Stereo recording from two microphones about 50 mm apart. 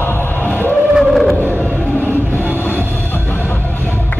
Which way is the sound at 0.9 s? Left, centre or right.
Centre.